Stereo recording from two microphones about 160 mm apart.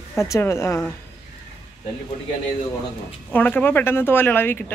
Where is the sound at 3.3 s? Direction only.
10° left (ahead or behind).